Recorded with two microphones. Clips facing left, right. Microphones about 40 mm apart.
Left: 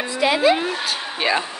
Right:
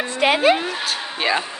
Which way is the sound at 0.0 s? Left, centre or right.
Right.